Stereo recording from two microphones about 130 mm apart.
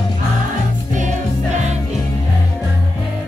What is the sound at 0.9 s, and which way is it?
Music, 65° right (ahead or behind).